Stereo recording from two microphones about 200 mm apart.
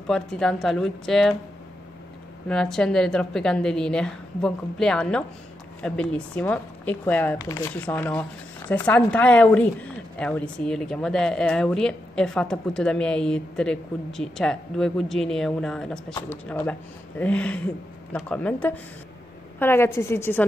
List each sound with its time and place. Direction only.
0.1 s speech: 5° left (ahead or behind)
2.4 s a woman's voice: 5° left (ahead or behind)